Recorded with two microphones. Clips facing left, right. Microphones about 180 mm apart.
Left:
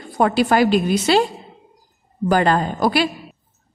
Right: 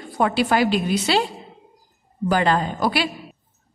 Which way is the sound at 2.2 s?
45° left (ahead or behind).